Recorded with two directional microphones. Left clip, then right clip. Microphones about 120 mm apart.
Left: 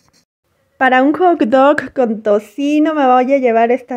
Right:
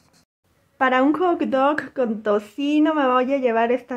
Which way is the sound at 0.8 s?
35° left (ahead or behind).